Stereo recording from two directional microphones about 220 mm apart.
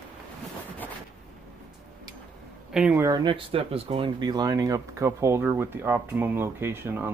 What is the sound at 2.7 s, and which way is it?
Speech, 5° right (ahead or behind).